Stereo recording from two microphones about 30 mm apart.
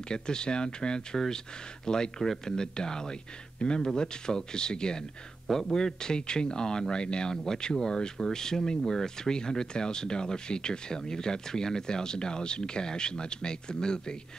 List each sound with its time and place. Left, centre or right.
0.1 s speech: left
1.1 s speech: centre